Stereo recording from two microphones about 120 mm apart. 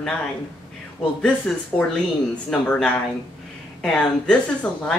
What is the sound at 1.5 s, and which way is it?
Speech, 5° left (ahead or behind).